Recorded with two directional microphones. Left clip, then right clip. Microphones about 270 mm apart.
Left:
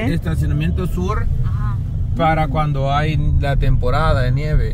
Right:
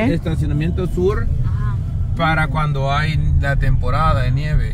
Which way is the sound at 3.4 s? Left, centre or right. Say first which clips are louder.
Left 1 dB; centre.